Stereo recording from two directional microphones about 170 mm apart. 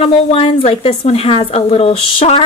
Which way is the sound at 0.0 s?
35° left (ahead or behind).